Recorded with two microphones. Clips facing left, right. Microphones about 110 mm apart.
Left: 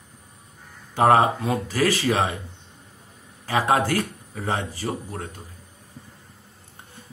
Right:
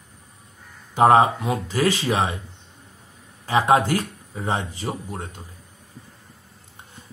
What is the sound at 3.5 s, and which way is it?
Speech, 25° right (ahead or behind).